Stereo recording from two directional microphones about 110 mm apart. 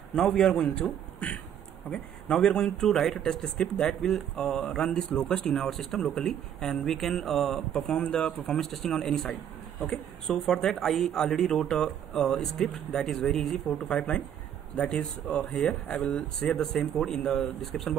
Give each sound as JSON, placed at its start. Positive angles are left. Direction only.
{"t": 0.1, "sound": "speech", "side_deg": 5}